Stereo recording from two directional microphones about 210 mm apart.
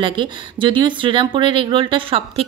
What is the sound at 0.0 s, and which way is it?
Speech, 25° right (ahead or behind).